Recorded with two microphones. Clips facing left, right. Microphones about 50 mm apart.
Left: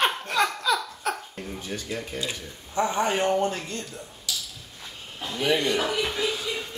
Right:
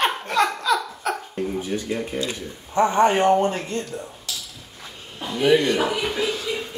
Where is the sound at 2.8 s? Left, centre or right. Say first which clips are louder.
Right 7 dB; right.